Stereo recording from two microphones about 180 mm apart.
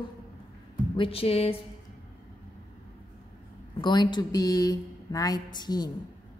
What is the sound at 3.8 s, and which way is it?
Speech, 25° left (ahead or behind).